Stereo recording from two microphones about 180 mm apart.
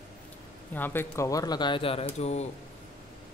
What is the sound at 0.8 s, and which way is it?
Speech, 10° left (ahead or behind).